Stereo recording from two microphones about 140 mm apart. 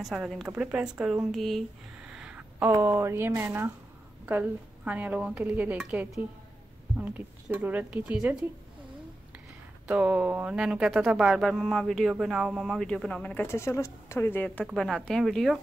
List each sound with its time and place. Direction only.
0.0 s speech: centre (ahead or behind)
2.0 s a sound: 5° right (ahead or behind)
2.7 s speech: 20° right (ahead or behind)
9.8 s speech: 10° right (ahead or behind)